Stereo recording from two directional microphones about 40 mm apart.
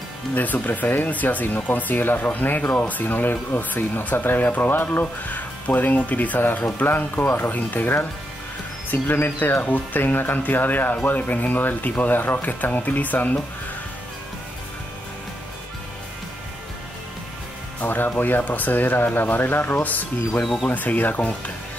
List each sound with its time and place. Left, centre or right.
0.3 s speech: left
8.9 s speech: left
9.4 s speech: left
17.8 s speech: left
19.8 s speech: left